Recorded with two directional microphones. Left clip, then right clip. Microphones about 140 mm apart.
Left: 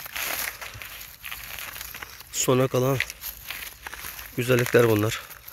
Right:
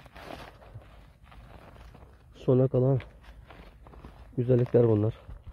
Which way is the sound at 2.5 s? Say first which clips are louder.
Left 2 dB; 25° left (ahead or behind).